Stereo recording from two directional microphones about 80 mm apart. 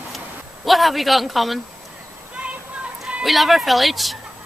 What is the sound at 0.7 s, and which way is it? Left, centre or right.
Speech, centre.